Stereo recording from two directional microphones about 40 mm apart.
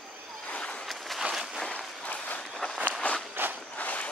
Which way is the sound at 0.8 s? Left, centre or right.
Centre.